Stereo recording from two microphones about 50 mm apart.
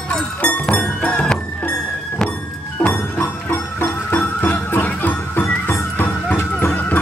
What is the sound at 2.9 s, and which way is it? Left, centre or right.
Music, left.